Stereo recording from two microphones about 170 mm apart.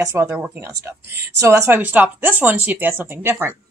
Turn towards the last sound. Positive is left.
turn(degrees=-15)  # may be behind; listen again after turning